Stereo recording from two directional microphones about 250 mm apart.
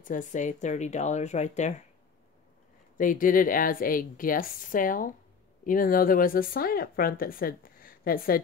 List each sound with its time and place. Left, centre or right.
0.0 s speech: left
3.0 s speech: left